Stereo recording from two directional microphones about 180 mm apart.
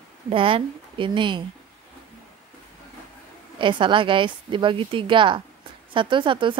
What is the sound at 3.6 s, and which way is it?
A woman's voice, 25° right (ahead or behind).